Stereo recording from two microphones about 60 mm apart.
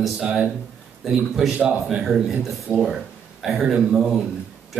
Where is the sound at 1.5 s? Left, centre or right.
Right; by 4.2 s centre.